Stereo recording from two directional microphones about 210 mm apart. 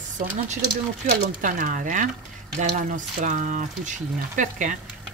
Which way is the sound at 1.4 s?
40° right (ahead or behind).